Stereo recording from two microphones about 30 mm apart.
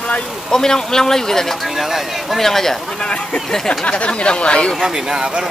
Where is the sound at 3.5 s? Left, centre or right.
Centre.